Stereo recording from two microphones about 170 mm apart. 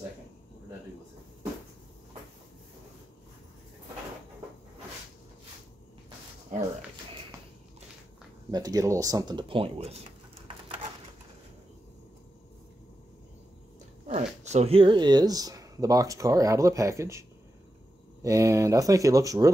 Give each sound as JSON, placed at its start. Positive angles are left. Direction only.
{"t": 8.5, "sound": "speech", "side_deg": -20}
{"t": 14.0, "sound": "speech", "side_deg": -45}
{"t": 18.2, "sound": "speech", "side_deg": -20}